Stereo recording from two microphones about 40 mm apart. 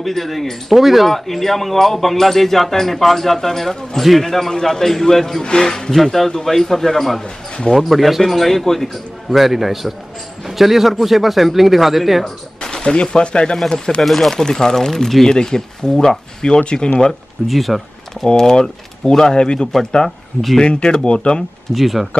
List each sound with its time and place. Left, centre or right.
0.0 s speech: centre
12.6 s gunshot: centre
12.9 s speech: left
14.0 s speech: centre
14.3 s speech: centre
15.2 s speech: centre
17.5 s speech: centre
18.2 s speech: centre
21.7 s speech: centre